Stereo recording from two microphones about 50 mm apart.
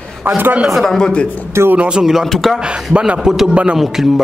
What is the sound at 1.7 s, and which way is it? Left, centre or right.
Speech, centre.